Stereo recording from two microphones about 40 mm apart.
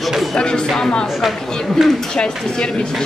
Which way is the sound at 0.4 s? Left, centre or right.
Left.